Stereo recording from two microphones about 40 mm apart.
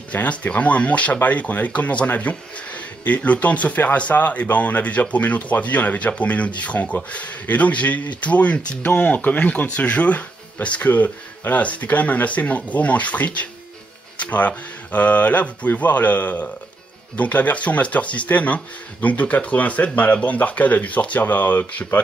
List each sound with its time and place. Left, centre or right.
0.1 s speech: left